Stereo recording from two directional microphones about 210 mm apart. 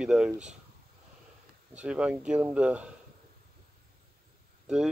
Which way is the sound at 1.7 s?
5° right (ahead or behind).